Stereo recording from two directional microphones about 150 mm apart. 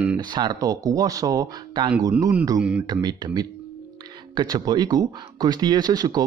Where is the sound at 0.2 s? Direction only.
30° right (ahead or behind).